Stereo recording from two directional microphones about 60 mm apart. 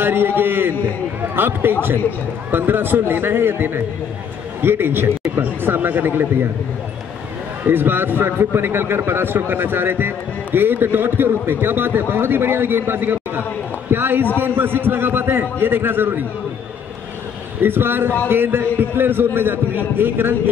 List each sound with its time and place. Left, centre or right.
0.0 s a man's voice: right
7.6 s a man's voice: right
17.6 s a man's voice: right